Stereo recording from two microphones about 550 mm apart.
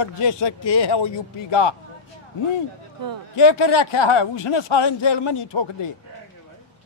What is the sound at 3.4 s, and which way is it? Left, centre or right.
Speech, left.